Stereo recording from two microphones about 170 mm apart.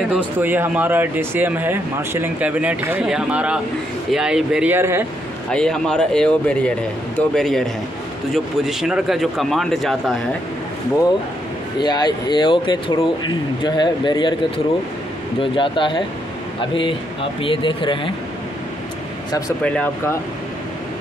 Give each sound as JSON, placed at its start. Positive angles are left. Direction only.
{"t": 0.4, "sound": "a man's voice", "side_deg": -10}
{"t": 5.5, "sound": "a man's voice", "side_deg": 5}
{"t": 11.8, "sound": "speech", "side_deg": 25}
{"t": 15.5, "sound": "speech", "side_deg": 30}
{"t": 19.6, "sound": "speech", "side_deg": 10}